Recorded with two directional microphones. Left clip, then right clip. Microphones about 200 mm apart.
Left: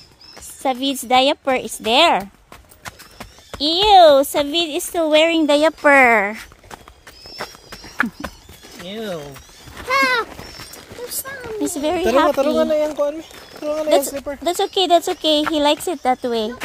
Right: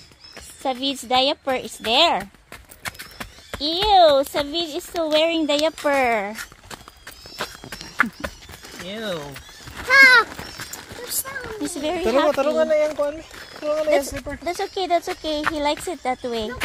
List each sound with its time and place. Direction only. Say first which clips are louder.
0.6 s a woman's voice: left 4 dB; 35° left (ahead or behind)
2.8 s horse: right 3 dB; 10° left (ahead or behind)
3.9 s a woman's voice: left 5 dB; 40° left (ahead or behind)
7.4 s horse: right 1 dB; centre (ahead or behind)
8.9 s speech: left 1 dB; 25° left (ahead or behind)
9.8 s a sound: right 5 dB; 25° left (ahead or behind)
10.2 s a sound: right 1 dB; 10° right (ahead or behind)
11.7 s a woman's voice: left 4 dB; 40° left (ahead or behind); by 14.5 s 60° left (ahead or behind)
14.5 s a woman's voice: left 6 dB; 45° left (ahead or behind)